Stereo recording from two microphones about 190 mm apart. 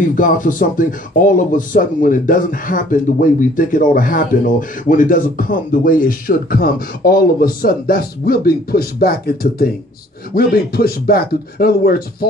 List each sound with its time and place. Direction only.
0.0 s speech: 45° left (ahead or behind)